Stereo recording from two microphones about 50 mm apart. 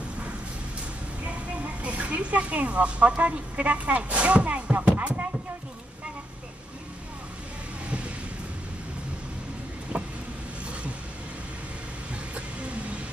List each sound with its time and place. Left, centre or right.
1.8 s a woman's voice: right
9.9 s vehicle: centre
12.4 s vehicle: right